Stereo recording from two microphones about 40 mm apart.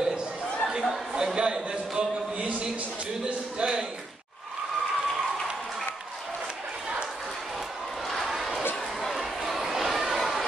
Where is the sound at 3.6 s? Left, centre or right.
Centre.